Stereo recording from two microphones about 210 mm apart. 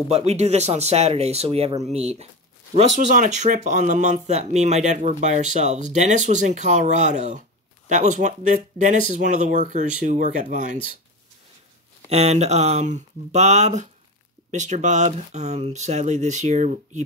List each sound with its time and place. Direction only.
0.1 s speech: 30° right (ahead or behind)
12.1 s speech: 30° right (ahead or behind)